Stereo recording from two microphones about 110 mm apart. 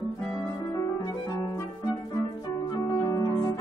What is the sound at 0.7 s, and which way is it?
Music, 30° left (ahead or behind).